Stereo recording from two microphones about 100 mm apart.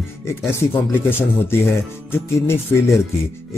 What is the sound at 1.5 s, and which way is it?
Speech, 25° left (ahead or behind).